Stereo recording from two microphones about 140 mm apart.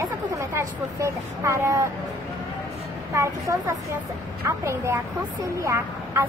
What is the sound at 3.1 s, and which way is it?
Speech, 20° right (ahead or behind).